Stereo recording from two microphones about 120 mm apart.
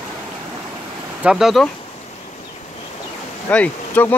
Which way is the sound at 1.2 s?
5° right (ahead or behind).